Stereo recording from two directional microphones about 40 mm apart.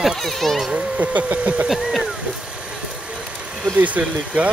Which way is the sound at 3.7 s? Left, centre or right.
Right.